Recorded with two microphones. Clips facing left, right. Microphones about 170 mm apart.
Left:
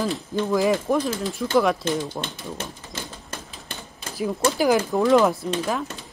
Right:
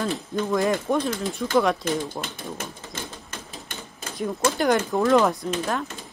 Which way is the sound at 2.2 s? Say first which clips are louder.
Left 1 dB; 30° left (ahead or behind).